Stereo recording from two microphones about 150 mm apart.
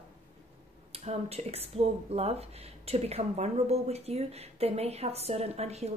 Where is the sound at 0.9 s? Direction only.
45° right (ahead or behind).